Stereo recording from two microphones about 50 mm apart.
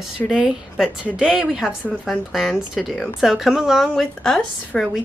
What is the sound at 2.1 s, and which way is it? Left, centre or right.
Speech, centre.